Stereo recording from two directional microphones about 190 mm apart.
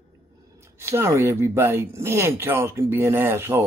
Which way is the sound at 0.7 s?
15° right (ahead or behind).